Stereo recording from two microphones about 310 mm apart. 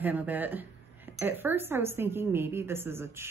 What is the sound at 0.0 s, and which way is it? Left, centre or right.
Speech, centre.